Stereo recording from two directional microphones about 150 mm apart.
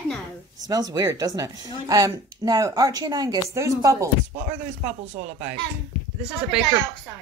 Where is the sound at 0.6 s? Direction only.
25° right (ahead or behind).